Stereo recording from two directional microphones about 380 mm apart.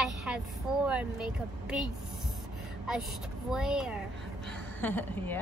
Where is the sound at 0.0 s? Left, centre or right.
Centre.